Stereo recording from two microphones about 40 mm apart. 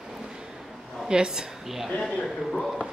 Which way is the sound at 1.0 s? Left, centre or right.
Centre.